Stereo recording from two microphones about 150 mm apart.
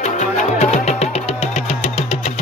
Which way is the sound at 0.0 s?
50° left (ahead or behind).